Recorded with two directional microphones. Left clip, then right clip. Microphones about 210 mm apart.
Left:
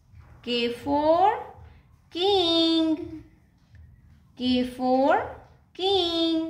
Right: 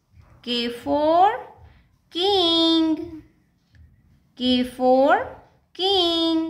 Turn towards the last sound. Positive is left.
turn(degrees=-15)  # may be behind; listen again after turning